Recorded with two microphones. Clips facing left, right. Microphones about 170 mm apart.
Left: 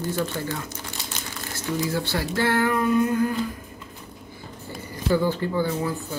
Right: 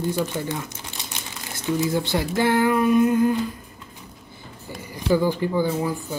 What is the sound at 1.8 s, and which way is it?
Speech, 20° right (ahead or behind).